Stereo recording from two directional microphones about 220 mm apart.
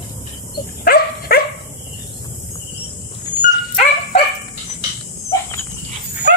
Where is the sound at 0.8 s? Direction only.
45° left (ahead or behind).